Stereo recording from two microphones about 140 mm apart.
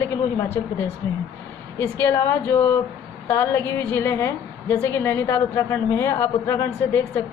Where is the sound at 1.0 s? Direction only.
15° left (ahead or behind).